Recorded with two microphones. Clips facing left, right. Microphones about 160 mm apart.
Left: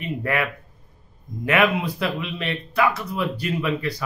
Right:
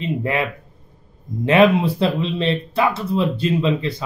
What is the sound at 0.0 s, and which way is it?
Speech, 25° right (ahead or behind).